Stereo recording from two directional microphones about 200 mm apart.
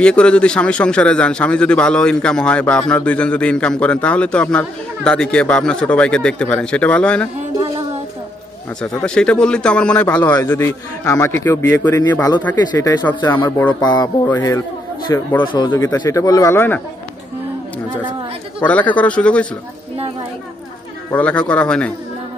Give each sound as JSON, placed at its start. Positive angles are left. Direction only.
{"t": 0.0, "sound": "a man's voice", "side_deg": 5}
{"t": 8.8, "sound": "speech", "side_deg": 5}
{"t": 13.7, "sound": "speech", "side_deg": 20}
{"t": 18.6, "sound": "speech", "side_deg": 5}
{"t": 21.1, "sound": "speech", "side_deg": 5}